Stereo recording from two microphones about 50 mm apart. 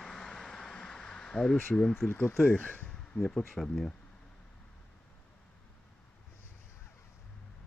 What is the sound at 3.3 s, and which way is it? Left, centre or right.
Speech, centre.